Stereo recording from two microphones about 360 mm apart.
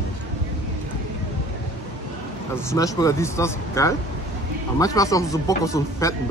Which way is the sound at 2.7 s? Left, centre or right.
Centre.